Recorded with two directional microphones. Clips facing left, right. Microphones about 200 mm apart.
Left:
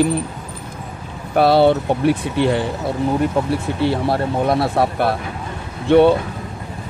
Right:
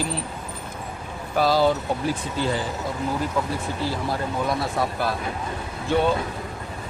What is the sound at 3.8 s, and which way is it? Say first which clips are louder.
Speech: left 9 dB; 65° left (ahead or behind).